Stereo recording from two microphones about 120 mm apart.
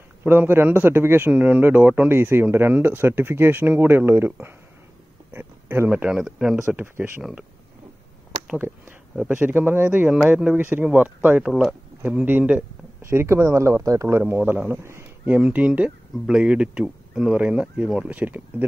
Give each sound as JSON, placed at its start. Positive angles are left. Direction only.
{"t": 0.2, "sound": "a man's voice", "side_deg": -15}
{"t": 5.3, "sound": "a sound", "side_deg": -20}
{"t": 5.9, "sound": "a man's voice", "side_deg": -10}
{"t": 8.5, "sound": "a man's voice", "side_deg": -15}
{"t": 9.1, "sound": "speech", "side_deg": 0}
{"t": 9.4, "sound": "a man's voice", "side_deg": -15}
{"t": 14.8, "sound": "a sound", "side_deg": -20}
{"t": 15.3, "sound": "a man's voice", "side_deg": -10}